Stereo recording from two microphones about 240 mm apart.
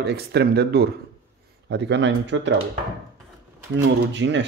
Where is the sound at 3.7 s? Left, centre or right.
Right.